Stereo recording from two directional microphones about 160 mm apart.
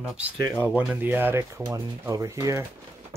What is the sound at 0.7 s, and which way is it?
Speech, 10° right (ahead or behind).